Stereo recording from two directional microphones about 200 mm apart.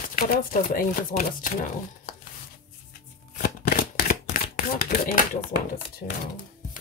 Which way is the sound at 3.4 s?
45° left (ahead or behind).